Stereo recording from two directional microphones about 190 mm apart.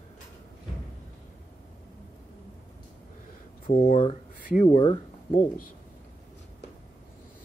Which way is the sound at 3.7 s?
50° left (ahead or behind).